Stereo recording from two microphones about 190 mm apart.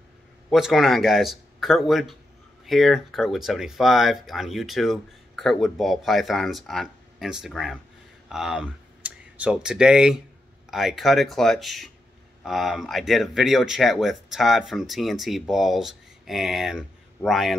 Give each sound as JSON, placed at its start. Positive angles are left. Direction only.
{"t": 0.5, "sound": "speech", "side_deg": 0}